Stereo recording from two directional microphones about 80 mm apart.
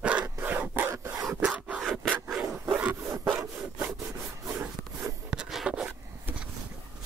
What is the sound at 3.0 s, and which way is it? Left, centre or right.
Rub, right.